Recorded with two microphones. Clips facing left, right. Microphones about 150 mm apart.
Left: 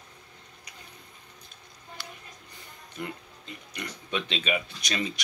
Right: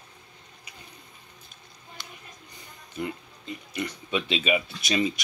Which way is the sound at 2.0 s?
20° right (ahead or behind).